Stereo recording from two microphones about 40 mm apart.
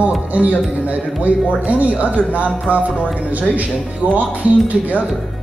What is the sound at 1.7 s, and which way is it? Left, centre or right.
Speech, right.